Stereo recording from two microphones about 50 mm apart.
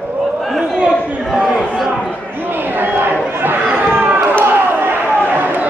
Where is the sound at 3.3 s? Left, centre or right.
Right.